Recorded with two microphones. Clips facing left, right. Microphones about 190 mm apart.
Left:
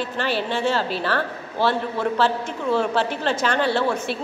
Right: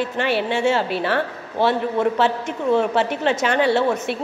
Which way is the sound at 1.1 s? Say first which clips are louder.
Right 2 dB; 20° right (ahead or behind).